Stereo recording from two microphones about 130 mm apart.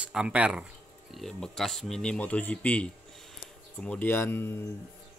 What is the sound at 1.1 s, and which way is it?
Speech, 5° left (ahead or behind).